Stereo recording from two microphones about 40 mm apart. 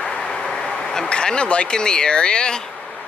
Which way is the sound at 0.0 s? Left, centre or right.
Centre.